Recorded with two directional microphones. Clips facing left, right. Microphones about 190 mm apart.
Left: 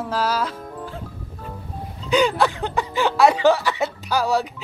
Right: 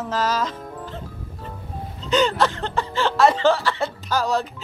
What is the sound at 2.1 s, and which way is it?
Speech, 10° left (ahead or behind).